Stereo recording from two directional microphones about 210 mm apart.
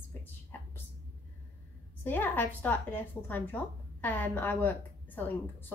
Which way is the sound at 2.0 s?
10° left (ahead or behind).